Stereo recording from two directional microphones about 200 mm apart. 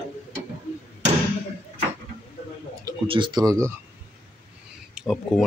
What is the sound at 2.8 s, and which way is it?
Speech, 25° right (ahead or behind).